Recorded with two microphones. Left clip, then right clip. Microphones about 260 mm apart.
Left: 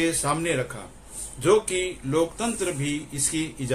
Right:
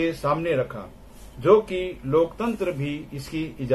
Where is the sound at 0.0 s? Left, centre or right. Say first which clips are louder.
Right 1 dB; centre.